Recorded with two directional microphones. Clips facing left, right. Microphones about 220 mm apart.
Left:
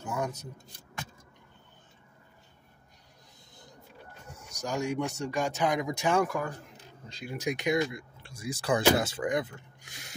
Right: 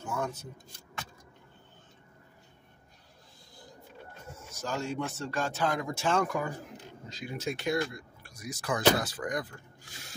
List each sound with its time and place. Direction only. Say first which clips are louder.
0.0 s a sound: left 1 dB; 10° left (ahead or behind)
4.6 s speech: left 3 dB; 15° left (ahead or behind)
6.2 s speech: even; centre (ahead or behind)
7.3 s speech: left 3 dB; 15° left (ahead or behind)